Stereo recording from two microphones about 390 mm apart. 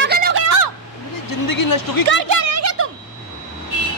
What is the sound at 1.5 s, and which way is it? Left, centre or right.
Speech, left.